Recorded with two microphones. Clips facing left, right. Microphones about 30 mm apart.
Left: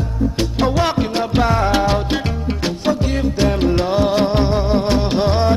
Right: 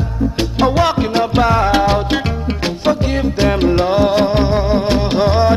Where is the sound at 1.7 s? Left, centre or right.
Centre.